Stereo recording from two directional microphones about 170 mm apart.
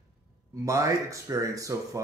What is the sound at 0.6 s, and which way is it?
Speech, 20° right (ahead or behind).